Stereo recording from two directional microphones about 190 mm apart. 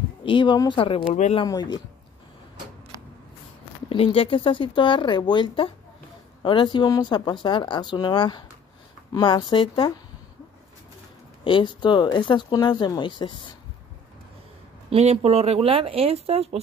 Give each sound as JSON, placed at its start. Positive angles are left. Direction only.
{"t": 0.2, "sound": "speech", "side_deg": 25}
{"t": 1.5, "sound": "speech", "side_deg": 20}
{"t": 3.9, "sound": "speech", "side_deg": 30}
{"t": 11.4, "sound": "speech", "side_deg": 25}
{"t": 14.9, "sound": "speech", "side_deg": -35}